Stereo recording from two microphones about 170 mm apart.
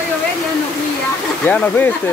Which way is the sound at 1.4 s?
10° left (ahead or behind).